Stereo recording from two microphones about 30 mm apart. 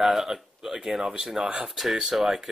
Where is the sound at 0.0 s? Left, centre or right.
Centre.